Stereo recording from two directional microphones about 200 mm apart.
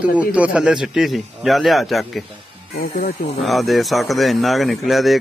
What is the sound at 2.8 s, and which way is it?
Speech, 50° left (ahead or behind).